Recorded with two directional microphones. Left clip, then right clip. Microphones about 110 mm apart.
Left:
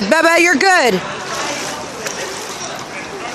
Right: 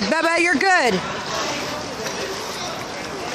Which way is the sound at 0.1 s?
60° left (ahead or behind).